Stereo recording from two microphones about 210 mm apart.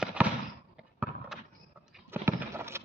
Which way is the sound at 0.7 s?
5° right (ahead or behind).